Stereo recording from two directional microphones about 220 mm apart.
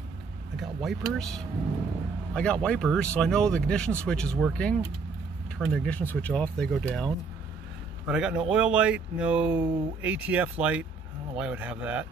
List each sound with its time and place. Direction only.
0.6 s speech: centre (ahead or behind)
8.1 s speech: 5° right (ahead or behind)